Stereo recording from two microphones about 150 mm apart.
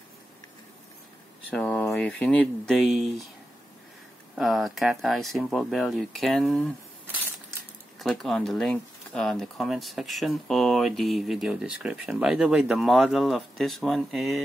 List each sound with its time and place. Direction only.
1.5 s speech: 10° left (ahead or behind)
4.4 s speech: centre (ahead or behind)
8.0 s speech: centre (ahead or behind)